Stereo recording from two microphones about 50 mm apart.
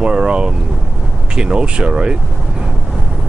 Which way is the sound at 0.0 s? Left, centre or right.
Centre.